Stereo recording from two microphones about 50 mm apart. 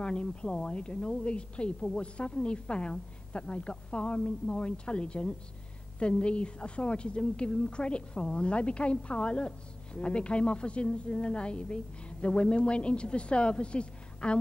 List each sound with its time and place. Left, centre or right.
0.0 s a woman's voice: centre